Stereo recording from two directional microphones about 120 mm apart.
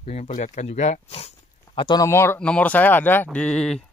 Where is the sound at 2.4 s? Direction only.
10° left (ahead or behind).